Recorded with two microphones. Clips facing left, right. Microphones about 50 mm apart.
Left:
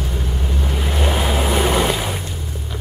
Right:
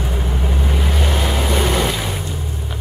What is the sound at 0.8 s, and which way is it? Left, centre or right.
Waves, centre.